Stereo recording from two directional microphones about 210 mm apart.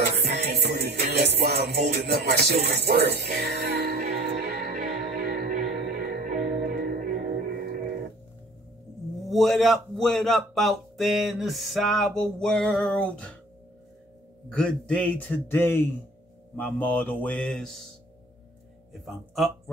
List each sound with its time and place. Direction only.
0.2 s music: 50° right (ahead or behind)
2.6 s speech: 50° right (ahead or behind)
4.4 s music: 50° right (ahead or behind)
9.3 s a man's voice: centre (ahead or behind)
14.5 s a man's voice: 5° left (ahead or behind)
19.0 s speech: centre (ahead or behind)